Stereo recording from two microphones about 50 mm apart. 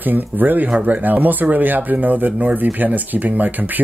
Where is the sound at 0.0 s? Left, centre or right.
Right.